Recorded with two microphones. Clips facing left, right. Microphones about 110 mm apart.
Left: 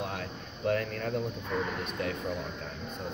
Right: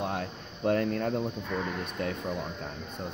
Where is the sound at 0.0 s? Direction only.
30° right (ahead or behind).